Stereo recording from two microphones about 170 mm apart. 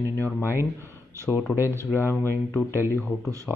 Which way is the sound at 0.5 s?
15° right (ahead or behind).